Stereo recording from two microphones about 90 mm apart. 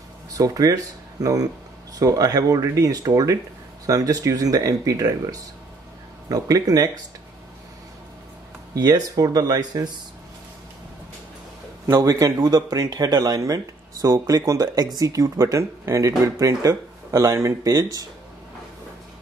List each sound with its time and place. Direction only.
0.4 s speech: 40° right (ahead or behind)
8.7 s speech: 45° right (ahead or behind)
11.8 s speech: 40° right (ahead or behind)